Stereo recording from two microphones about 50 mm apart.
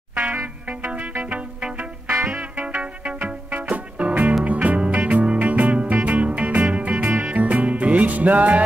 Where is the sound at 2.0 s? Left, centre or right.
Right.